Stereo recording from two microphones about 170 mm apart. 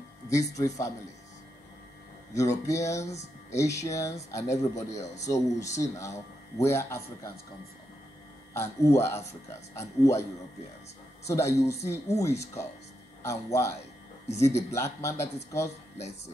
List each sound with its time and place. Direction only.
0.3 s speech: 20° left (ahead or behind)
2.3 s speech: 20° left (ahead or behind)
4.9 s speech: 40° left (ahead or behind)
5.2 s speech: 20° left (ahead or behind)
8.5 s speech: 15° left (ahead or behind)
11.2 s speech: 15° left (ahead or behind)
14.2 s speech: 40° left (ahead or behind)
14.7 s speech: 15° left (ahead or behind)